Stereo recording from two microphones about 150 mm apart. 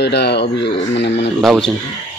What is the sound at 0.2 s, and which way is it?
Speech, 90° left.